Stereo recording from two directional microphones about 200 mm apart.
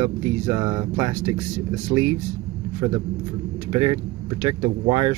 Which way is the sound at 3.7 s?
25° right (ahead or behind).